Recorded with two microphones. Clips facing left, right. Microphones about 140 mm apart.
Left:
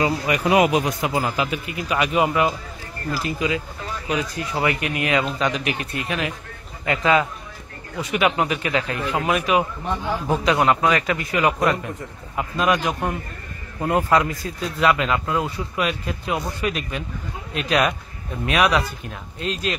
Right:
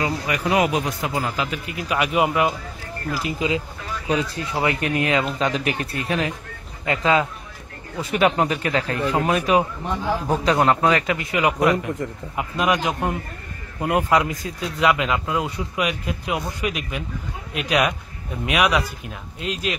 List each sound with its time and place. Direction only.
0.0 s speech: 20° left (ahead or behind)
1.3 s speech: 5° left (ahead or behind)
1.9 s speech: 5° right (ahead or behind)
3.2 s a man's voice: 20° right (ahead or behind)